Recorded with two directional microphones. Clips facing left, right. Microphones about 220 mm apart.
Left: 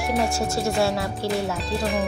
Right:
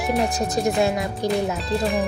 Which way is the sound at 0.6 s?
20° right (ahead or behind).